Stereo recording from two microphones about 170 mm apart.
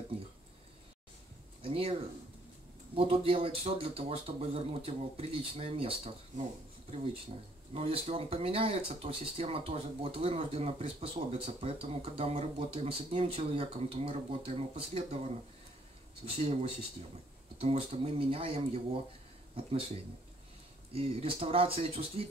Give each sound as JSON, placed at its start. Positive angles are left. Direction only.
{"t": 1.6, "sound": "speech", "side_deg": -35}
{"t": 7.7, "sound": "speech", "side_deg": -35}
{"t": 20.9, "sound": "speech", "side_deg": -35}